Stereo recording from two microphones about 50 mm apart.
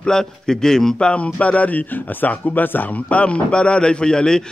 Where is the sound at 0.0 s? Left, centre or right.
Centre.